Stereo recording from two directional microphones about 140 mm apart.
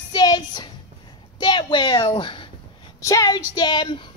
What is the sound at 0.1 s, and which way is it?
Music, 30° left (ahead or behind).